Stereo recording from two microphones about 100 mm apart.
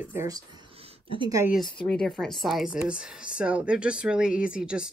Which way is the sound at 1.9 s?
10° left (ahead or behind).